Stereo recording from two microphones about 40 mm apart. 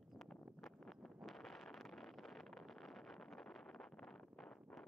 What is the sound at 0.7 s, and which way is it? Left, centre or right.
Wind noise, centre.